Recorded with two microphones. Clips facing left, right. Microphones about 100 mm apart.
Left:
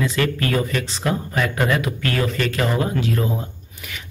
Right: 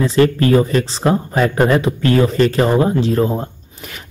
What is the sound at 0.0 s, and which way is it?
Speech, 30° right (ahead or behind).